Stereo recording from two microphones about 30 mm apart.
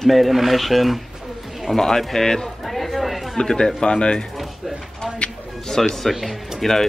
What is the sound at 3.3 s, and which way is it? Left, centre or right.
Speech, left.